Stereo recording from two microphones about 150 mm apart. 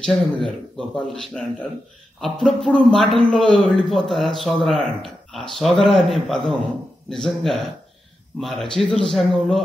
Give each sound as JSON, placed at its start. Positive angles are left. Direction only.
{"t": 0.0, "sound": "speech", "side_deg": 5}